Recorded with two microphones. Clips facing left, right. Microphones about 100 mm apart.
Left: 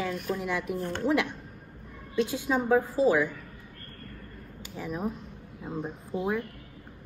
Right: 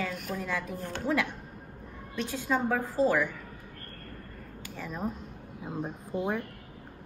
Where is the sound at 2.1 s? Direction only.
15° left (ahead or behind).